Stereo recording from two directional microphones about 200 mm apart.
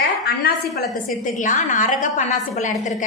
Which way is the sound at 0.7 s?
40° left (ahead or behind).